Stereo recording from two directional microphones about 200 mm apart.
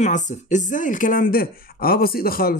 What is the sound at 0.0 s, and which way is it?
Speech, 35° left (ahead or behind).